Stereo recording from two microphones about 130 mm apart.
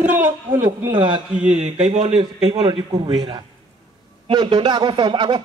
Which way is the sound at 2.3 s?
40° right (ahead or behind).